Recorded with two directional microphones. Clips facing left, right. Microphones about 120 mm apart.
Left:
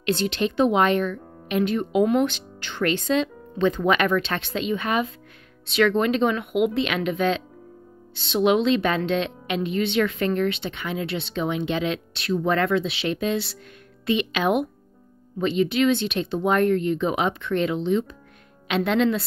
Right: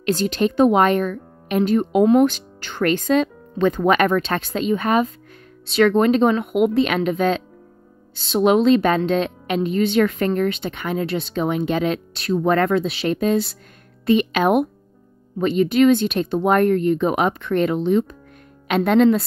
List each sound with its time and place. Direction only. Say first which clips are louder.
0.0 s a woman's voice: right 4 dB; 40° right (ahead or behind)